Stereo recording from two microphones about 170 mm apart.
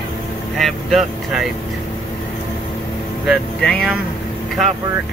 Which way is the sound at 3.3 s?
5° left (ahead or behind).